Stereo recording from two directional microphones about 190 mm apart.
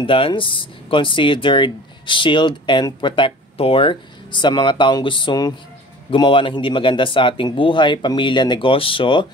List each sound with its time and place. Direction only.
0.0 s speech: 25° left (ahead or behind)